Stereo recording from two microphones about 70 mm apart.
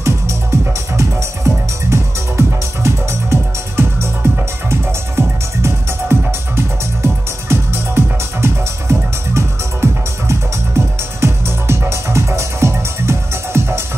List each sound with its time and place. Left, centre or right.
0.0 s music: right